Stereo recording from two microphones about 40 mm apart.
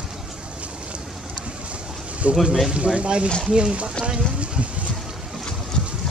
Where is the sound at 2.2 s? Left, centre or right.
Right.